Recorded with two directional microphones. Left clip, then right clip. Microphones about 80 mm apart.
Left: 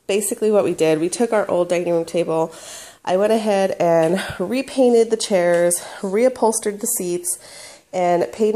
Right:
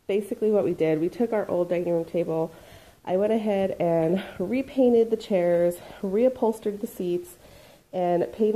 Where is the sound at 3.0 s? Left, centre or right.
Left.